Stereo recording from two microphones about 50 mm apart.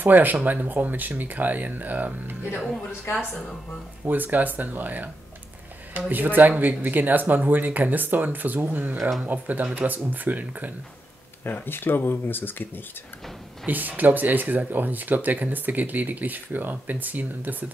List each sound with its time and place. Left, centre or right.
0.0 s speech: right
3.1 s speech: left
4.0 s speech: right
11.5 s speech: left
13.7 s speech: right